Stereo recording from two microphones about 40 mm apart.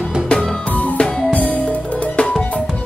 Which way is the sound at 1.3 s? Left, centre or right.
Left.